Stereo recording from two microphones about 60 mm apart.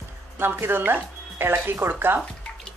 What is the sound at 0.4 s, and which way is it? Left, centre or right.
Speech, right.